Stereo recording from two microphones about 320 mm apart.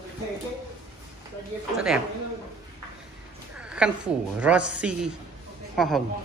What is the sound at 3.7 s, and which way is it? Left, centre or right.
A woman's voice, centre.